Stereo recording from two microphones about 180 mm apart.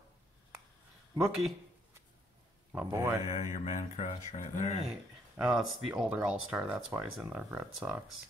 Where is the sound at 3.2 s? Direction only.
40° left (ahead or behind).